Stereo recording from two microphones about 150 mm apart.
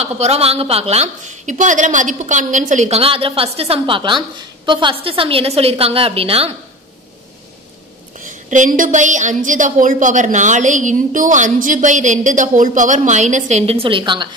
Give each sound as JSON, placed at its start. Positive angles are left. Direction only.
{"t": 0.0, "sound": "a woman's voice", "side_deg": -45}
{"t": 8.2, "sound": "a woman's voice", "side_deg": -60}